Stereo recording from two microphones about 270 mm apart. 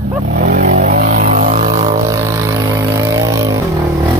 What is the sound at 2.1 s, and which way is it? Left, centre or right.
Vehicle, centre.